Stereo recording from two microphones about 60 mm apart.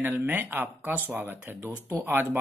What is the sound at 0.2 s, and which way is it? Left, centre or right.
Speech, right.